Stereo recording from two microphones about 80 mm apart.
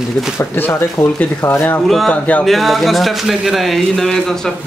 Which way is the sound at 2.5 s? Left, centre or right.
Centre.